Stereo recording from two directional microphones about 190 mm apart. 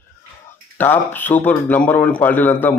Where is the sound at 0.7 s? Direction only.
10° left (ahead or behind).